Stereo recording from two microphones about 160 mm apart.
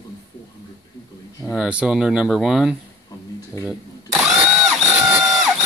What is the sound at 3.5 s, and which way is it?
Speech, 20° left (ahead or behind).